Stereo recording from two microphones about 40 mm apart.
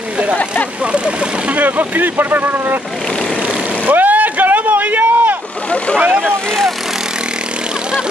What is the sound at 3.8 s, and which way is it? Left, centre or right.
Vehicle, right.